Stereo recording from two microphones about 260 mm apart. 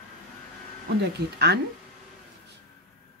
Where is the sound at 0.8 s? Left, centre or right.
Right.